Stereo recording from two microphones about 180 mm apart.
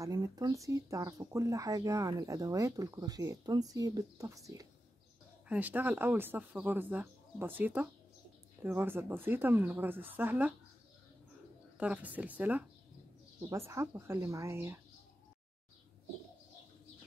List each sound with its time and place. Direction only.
0.0 s speech: 20° right (ahead or behind)
11.8 s speech: 5° right (ahead or behind)